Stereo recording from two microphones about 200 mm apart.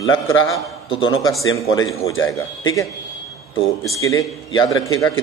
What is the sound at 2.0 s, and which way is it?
Speech, 85° left.